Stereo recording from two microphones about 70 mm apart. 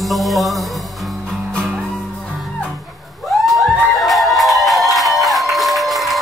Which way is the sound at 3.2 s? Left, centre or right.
Centre.